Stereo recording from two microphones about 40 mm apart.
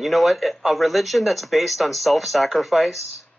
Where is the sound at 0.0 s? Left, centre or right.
Centre.